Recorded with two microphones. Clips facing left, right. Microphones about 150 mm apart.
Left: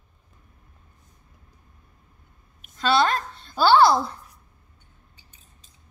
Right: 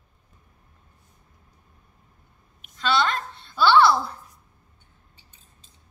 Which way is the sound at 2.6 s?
40° left (ahead or behind).